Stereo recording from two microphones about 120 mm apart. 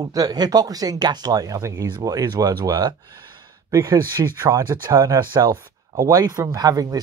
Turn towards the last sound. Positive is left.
turn(degrees=-30)  # may be behind; listen again after turning